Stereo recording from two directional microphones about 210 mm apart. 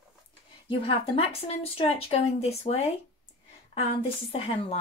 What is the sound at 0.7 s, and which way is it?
Speech, 25° left (ahead or behind).